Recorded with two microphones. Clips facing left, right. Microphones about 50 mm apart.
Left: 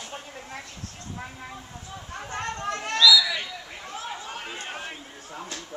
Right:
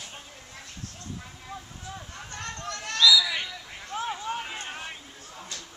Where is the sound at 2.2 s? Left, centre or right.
Left.